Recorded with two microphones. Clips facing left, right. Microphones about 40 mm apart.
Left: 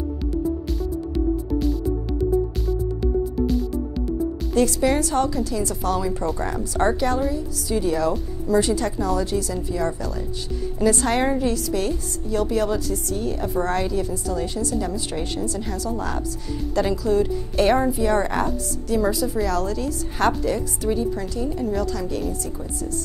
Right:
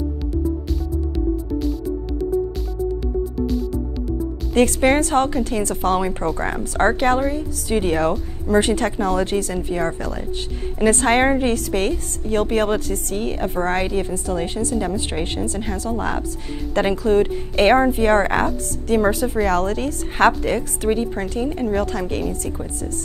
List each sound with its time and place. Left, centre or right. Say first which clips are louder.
4.6 s a woman's voice: right 4 dB; right